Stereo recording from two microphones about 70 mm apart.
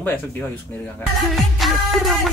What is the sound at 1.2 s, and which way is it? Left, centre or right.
Music, centre.